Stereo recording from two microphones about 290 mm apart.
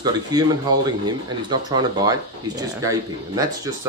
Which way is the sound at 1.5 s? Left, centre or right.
Centre.